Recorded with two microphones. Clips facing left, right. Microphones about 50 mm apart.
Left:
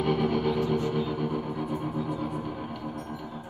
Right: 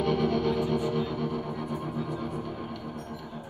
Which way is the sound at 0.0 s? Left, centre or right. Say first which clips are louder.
Even; centre.